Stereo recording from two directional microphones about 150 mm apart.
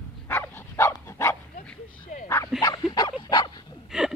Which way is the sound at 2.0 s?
60° left (ahead or behind).